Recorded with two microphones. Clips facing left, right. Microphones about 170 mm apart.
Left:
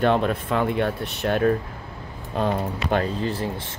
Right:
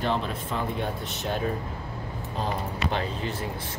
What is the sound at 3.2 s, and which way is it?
Speech, 30° left (ahead or behind).